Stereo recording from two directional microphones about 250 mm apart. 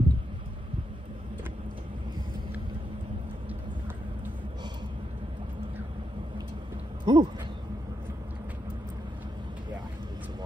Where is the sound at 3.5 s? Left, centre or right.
Centre.